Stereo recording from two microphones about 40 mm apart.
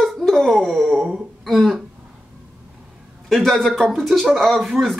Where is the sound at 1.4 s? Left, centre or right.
Centre.